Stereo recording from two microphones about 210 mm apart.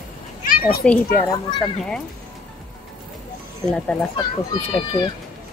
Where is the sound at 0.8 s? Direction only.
5° left (ahead or behind).